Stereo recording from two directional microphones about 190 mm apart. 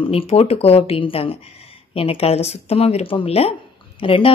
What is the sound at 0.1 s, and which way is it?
A woman's voice, 30° left (ahead or behind).